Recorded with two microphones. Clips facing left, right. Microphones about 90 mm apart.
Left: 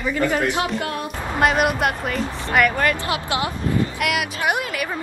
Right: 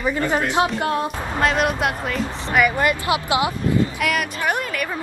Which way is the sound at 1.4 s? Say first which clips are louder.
Left 1 dB; 5° left (ahead or behind).